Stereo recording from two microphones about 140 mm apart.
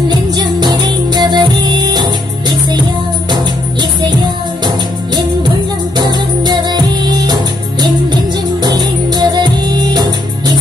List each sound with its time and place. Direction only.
0.4 s music: 30° right (ahead or behind)
5.9 s music: 30° right (ahead or behind)
8.6 s music: 30° right (ahead or behind)